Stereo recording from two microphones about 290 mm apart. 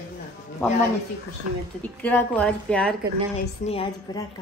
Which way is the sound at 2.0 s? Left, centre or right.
Centre.